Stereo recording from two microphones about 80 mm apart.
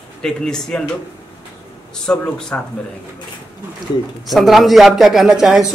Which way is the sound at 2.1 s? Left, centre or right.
Centre.